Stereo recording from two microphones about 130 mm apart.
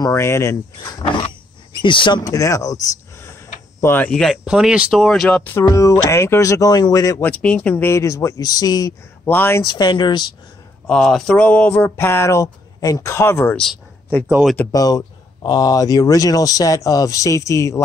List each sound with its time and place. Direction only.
0.0 s speech: 20° left (ahead or behind)
1.1 s speech: 35° left (ahead or behind); by 4.4 s 5° left (ahead or behind)
4.5 s speech: 5° right (ahead or behind)
5.4 s speech: 15° left (ahead or behind)
7.2 s speech: 10° left (ahead or behind); by 8.9 s 30° left (ahead or behind)
9.2 s speech: 15° left (ahead or behind)
9.6 s speech: 35° left (ahead or behind)
10.9 s speech: 5° left (ahead or behind)
13.6 s a sound: 5° left (ahead or behind)
14.7 s speech: 30° left (ahead or behind)